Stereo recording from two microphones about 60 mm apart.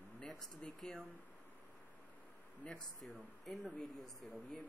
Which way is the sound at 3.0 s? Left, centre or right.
Centre.